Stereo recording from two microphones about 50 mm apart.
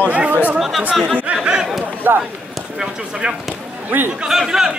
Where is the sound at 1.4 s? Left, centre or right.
Centre.